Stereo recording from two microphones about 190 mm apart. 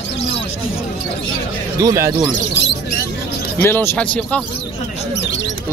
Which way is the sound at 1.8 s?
15° right (ahead or behind).